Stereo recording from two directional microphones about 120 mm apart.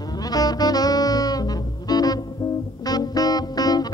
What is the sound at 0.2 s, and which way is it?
Saxophone, 30° left (ahead or behind).